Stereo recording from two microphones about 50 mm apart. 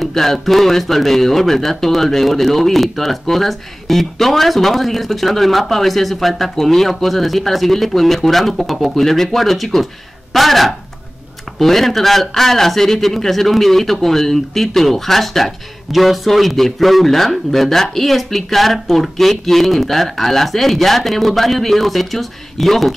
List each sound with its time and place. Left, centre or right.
0.0 s speech: centre